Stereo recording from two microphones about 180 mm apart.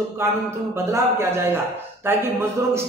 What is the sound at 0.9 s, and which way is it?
A man's voice, 15° right (ahead or behind).